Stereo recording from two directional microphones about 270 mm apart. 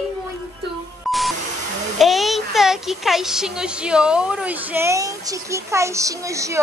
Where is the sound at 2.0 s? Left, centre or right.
Centre.